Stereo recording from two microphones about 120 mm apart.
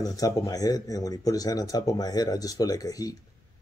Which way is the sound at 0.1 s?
30° left (ahead or behind).